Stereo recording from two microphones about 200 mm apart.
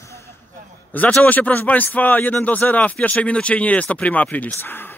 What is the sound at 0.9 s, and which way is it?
A man's voice, 5° left (ahead or behind).